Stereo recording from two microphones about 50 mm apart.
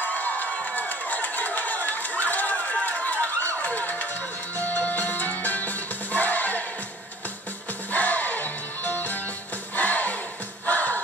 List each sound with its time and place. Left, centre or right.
0.0 s crowd: left
3.6 s a sound: left
4.6 s music: left
7.9 s music: left